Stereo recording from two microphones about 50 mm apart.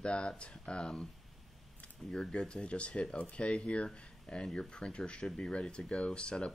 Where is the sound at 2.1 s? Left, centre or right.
Centre.